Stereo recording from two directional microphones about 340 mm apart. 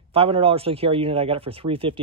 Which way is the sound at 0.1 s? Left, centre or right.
Centre.